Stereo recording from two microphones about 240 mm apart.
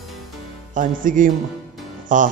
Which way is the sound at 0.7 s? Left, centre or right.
Right.